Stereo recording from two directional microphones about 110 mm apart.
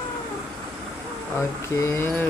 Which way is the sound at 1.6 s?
25° left (ahead or behind).